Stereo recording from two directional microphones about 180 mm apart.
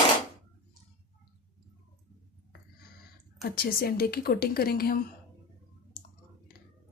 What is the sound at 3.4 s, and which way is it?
A woman's voice, 60° left (ahead or behind).